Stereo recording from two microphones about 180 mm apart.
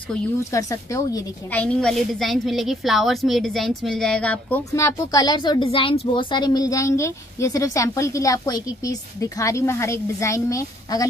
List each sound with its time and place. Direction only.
0.5 s a woman's voice: 20° left (ahead or behind)